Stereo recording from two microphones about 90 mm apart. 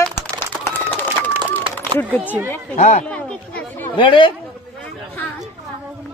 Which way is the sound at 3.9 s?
65° left (ahead or behind).